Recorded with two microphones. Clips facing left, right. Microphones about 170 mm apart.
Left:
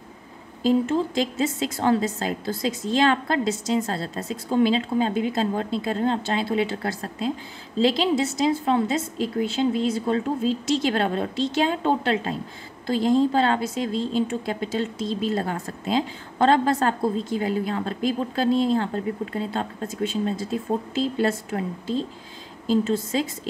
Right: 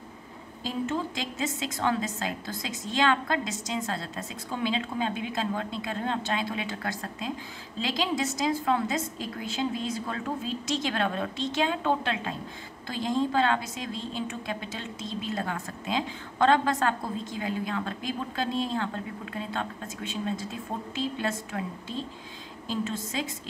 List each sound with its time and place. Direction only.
0.9 s a woman's voice: 30° left (ahead or behind)